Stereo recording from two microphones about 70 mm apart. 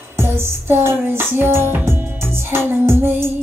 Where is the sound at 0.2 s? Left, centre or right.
Right.